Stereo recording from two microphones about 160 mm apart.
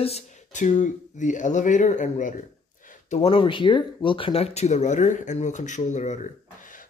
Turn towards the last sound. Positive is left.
turn(degrees=55)  # may be behind; listen again after turning